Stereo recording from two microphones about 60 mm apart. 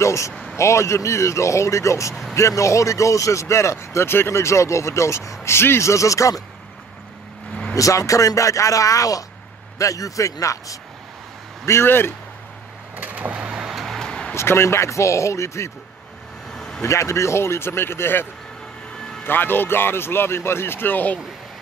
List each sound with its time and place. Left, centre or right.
0.0 s speech: left
5.5 s speech: left
7.7 s speech: left
11.6 s speech: left
12.9 s vehicle: right
13.7 s music: centre
14.3 s speech: left
16.5 s vehicle: centre
16.8 s speech: left
19.2 s speech: left